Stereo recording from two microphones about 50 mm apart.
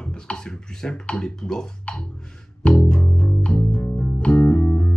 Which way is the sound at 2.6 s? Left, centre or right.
Centre.